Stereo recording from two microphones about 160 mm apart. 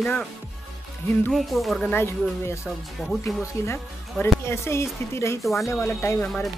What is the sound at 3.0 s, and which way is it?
Speech, centre (ahead or behind).